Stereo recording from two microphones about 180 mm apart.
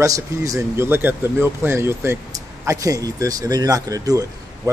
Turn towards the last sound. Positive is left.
turn(degrees=-20)  # may be behind; listen again after turning